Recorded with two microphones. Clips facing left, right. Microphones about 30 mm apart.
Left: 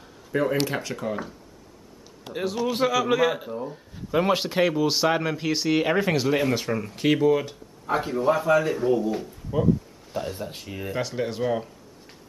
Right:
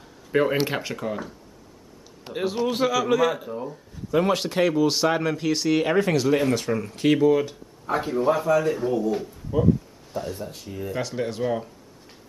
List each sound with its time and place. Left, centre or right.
0.3 s speech: right
0.7 s speech: centre
1.0 s speech: centre
2.7 s speech: centre
10.1 s speech: left
10.5 s speech: left
10.9 s speech: centre